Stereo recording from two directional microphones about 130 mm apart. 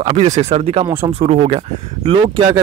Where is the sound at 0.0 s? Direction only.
60° right (ahead or behind).